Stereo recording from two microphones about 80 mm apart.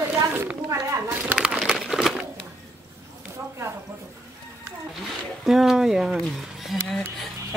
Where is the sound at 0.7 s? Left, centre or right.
Right.